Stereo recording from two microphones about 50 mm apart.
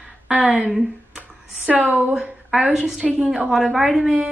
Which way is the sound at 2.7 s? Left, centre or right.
Centre.